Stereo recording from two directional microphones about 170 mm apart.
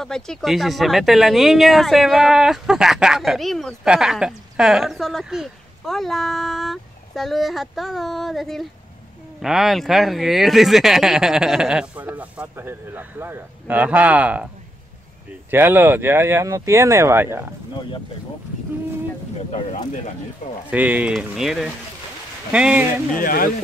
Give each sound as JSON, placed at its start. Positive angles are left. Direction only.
{"t": 0.0, "sound": "speech", "side_deg": 5}
{"t": 15.5, "sound": "speech", "side_deg": -10}
{"t": 20.4, "sound": "speech", "side_deg": 50}
{"t": 20.7, "sound": "speech", "side_deg": -10}
{"t": 23.1, "sound": "speech", "side_deg": 55}